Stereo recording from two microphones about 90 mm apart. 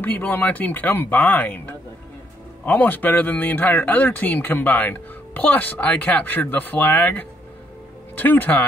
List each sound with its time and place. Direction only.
0.0 s speech: 20° left (ahead or behind)